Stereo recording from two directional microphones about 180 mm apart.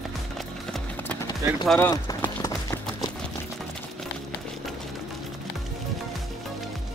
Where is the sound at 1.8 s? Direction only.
15° left (ahead or behind).